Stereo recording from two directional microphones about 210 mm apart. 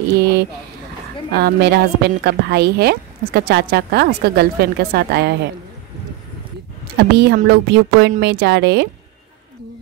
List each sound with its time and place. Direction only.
0.2 s a woman's voice: 50° right (ahead or behind)
7.0 s a woman's voice: 50° right (ahead or behind)